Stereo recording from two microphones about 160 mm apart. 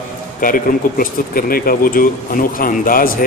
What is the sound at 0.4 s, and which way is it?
A man's voice, 60° left (ahead or behind).